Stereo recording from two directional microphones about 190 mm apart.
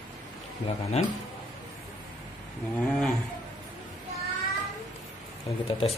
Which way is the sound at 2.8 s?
Centre (ahead or behind).